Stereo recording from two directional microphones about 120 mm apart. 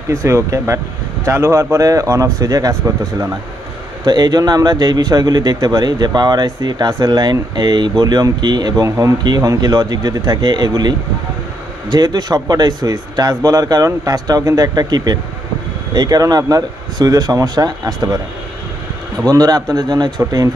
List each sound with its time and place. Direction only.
0.1 s speech: 25° right (ahead or behind)
4.0 s speech: 35° right (ahead or behind)
8.8 s speech: 25° right (ahead or behind)
19.2 s speech: 30° right (ahead or behind)